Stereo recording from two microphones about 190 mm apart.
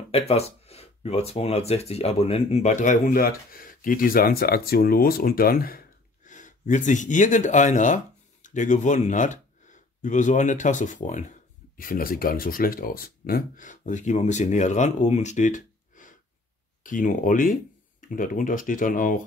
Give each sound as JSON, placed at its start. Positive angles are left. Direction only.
{"t": 0.1, "sound": "speech", "side_deg": 35}